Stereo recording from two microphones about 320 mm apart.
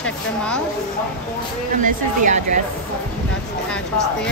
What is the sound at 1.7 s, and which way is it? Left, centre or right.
Speech, right.